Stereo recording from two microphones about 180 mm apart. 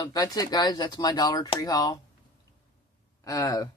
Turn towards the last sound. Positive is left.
turn(degrees=20)  # may be behind; listen again after turning